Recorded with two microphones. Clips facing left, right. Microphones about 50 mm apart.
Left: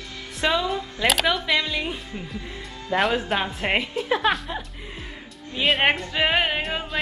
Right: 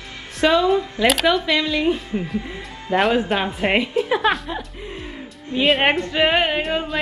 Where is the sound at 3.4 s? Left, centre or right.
Centre.